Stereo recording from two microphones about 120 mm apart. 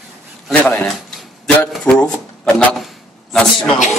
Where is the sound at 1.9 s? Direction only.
10° left (ahead or behind).